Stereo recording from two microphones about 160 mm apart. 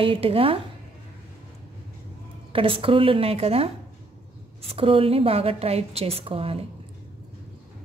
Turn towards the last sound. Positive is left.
turn(degrees=-35)  # may be behind; listen again after turning